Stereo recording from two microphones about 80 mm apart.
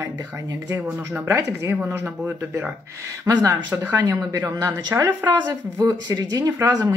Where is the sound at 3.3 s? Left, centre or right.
Right.